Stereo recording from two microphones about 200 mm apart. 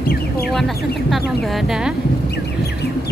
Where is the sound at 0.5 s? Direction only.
Centre (ahead or behind).